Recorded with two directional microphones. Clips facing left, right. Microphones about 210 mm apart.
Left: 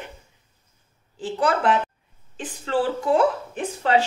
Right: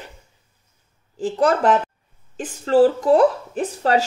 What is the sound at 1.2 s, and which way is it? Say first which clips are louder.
A woman's voice: right 4 dB; 40° right (ahead or behind).